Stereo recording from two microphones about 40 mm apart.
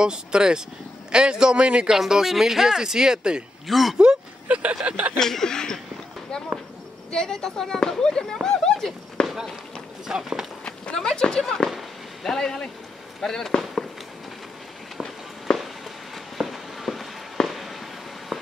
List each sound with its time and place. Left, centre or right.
0.0 s a man's voice: right
2.0 s speech: centre
3.6 s speech: centre
4.0 s speech: right
5.1 s speech: centre
7.1 s speech: centre
9.2 s run: centre
10.0 s speech: centre
11.0 s speech: centre
11.7 s firecracker: centre
12.4 s speech: centre
15.4 s a sound: centre
17.5 s fireworks: centre
18.3 s a sound: centre